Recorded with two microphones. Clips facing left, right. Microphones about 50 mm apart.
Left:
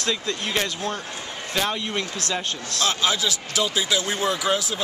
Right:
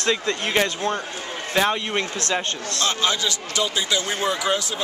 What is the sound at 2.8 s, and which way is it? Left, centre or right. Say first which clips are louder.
Speech: even; centre.